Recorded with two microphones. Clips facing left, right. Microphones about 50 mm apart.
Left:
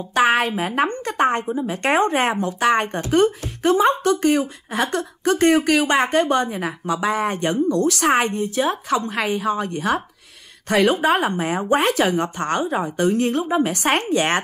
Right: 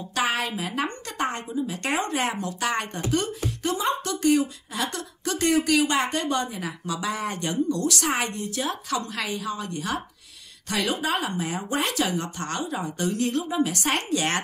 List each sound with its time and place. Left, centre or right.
0.1 s speech: left